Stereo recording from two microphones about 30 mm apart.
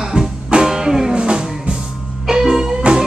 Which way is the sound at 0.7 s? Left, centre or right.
Centre.